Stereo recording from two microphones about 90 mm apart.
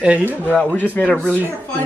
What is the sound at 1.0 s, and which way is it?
Speech, 10° left (ahead or behind).